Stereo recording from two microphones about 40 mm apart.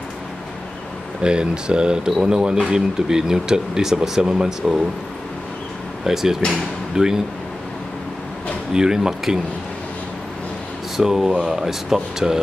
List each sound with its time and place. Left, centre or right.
1.2 s speech: right
6.0 s speech: centre
8.7 s speech: centre
11.0 s speech: centre